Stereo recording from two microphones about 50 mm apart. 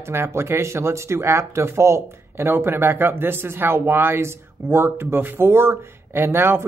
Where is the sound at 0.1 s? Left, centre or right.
Right.